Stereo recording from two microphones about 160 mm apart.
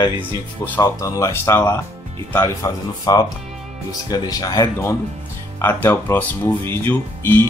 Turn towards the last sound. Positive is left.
turn(degrees=15)  # may be behind; listen again after turning